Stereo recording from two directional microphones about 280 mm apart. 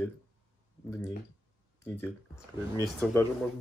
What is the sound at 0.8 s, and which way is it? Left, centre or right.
Speech, centre.